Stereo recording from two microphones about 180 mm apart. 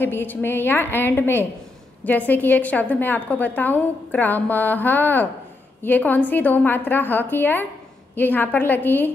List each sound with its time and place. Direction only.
0.0 s a woman's voice: 10° left (ahead or behind)